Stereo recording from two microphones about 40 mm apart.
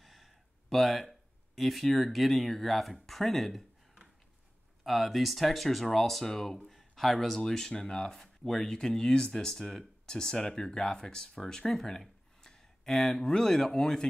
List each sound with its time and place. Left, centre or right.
0.0 s speech: centre
4.8 s speech: centre